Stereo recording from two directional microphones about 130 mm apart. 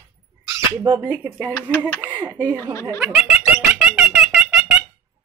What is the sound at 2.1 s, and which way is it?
Speech, 35° right (ahead or behind).